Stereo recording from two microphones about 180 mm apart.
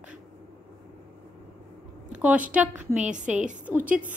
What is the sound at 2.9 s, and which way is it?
Speech, 45° right (ahead or behind).